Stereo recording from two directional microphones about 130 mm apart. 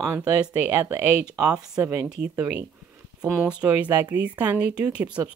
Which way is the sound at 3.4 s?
10° right (ahead or behind).